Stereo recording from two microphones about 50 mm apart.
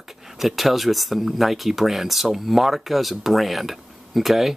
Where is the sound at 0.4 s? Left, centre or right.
Centre.